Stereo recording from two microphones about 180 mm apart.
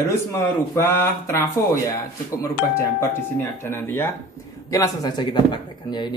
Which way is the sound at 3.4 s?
10° left (ahead or behind).